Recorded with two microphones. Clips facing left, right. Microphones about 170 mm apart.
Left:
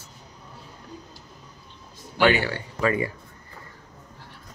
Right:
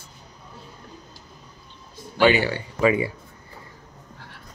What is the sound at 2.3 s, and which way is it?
Speech, 20° right (ahead or behind).